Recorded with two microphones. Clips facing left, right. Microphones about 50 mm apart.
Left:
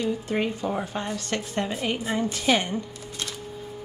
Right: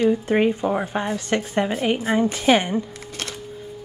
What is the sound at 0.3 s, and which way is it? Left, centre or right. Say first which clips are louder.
A woman's voice: right 7 dB; right.